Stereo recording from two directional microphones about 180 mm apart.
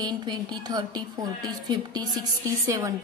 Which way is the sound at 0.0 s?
25° right (ahead or behind).